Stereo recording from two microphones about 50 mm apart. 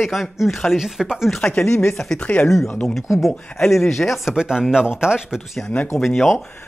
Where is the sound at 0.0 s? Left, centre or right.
Centre.